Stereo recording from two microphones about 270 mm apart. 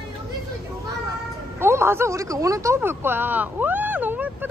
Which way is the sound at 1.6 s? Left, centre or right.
Centre.